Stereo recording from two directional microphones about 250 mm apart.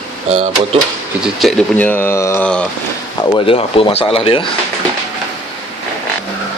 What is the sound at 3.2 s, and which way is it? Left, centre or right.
Speech, centre.